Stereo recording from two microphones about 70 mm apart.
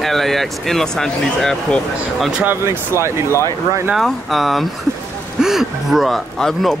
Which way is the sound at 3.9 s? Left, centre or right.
Centre.